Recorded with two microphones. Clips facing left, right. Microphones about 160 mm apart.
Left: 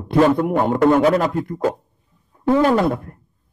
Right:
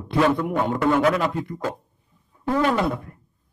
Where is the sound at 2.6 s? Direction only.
45° left (ahead or behind).